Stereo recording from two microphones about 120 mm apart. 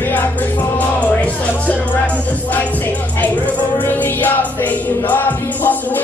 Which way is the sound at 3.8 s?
15° left (ahead or behind).